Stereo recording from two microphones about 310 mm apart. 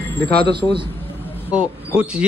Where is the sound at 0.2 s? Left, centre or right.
Centre.